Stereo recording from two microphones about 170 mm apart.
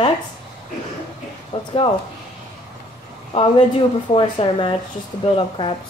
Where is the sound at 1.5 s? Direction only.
30° left (ahead or behind).